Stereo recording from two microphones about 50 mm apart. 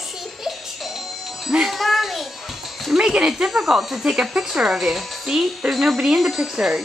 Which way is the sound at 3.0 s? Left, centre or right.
Centre.